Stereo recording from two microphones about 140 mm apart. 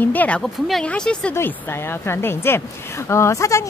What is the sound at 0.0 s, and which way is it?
Speech, 10° left (ahead or behind).